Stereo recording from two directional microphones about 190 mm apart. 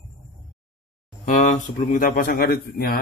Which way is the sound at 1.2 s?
40° left (ahead or behind).